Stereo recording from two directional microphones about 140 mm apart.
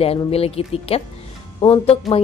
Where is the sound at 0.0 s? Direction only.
45° left (ahead or behind).